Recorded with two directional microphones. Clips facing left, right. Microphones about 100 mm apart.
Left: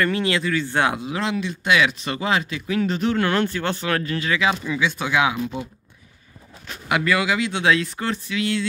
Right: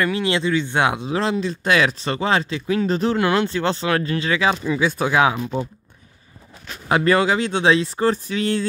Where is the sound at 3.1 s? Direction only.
20° right (ahead or behind); by 5.6 s 35° right (ahead or behind).